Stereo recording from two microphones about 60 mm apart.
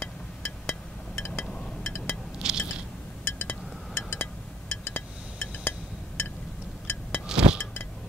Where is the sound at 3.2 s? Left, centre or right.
Centre.